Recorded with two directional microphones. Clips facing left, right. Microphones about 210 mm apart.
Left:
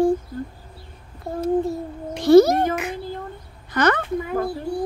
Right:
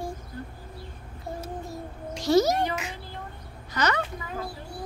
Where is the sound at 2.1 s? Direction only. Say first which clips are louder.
Left 9 dB; 55° left (ahead or behind).